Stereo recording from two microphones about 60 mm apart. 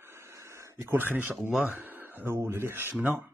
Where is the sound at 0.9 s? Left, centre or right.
Right.